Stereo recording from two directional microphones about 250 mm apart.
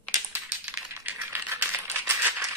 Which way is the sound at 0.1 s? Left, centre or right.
Centre.